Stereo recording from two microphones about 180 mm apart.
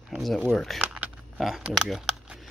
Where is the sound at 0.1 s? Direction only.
Centre (ahead or behind).